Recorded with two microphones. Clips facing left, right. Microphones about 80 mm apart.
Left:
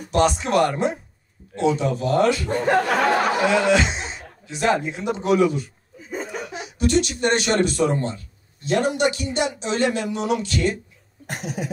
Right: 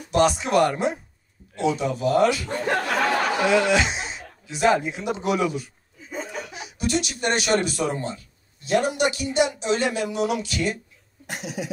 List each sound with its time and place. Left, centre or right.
0.1 s speech: centre
6.8 s speech: centre
11.2 s a sound: left